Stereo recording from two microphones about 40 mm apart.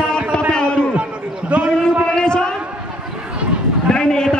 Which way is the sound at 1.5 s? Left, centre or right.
Right.